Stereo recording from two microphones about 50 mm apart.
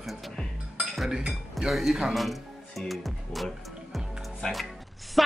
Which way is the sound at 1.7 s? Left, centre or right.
Centre.